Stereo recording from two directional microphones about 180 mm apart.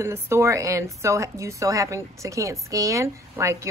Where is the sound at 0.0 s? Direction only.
15° right (ahead or behind).